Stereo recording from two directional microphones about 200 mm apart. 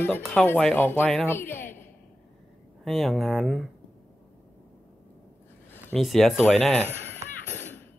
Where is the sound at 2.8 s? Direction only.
Centre (ahead or behind).